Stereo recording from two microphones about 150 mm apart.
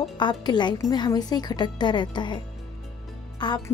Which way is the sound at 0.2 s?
30° left (ahead or behind).